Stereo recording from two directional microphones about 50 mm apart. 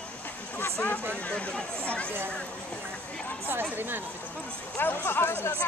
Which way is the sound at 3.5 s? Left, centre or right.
Right.